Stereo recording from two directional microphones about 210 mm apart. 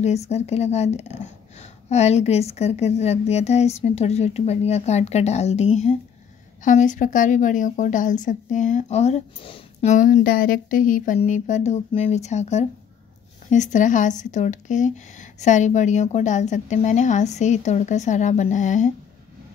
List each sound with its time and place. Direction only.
0.0 s a woman's voice: 30° left (ahead or behind)